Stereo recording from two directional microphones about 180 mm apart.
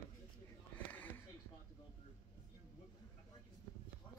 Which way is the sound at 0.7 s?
10° left (ahead or behind).